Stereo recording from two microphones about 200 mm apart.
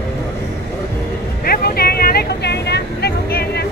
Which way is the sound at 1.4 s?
50° left (ahead or behind).